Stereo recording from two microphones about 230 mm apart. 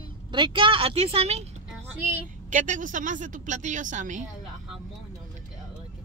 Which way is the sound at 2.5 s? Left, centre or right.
Right.